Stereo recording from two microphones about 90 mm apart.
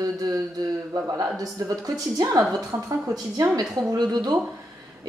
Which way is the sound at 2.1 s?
40° right (ahead or behind).